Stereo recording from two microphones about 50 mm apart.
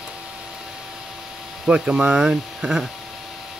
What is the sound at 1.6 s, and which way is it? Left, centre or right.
Speech, centre.